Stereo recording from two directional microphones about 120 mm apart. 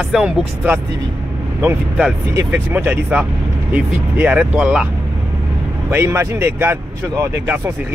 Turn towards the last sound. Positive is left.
turn(degrees=-20)  # may be behind; listen again after turning